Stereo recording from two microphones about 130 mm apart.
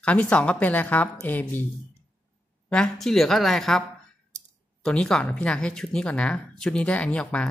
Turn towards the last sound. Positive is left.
turn(degrees=10)  # may be behind; listen again after turning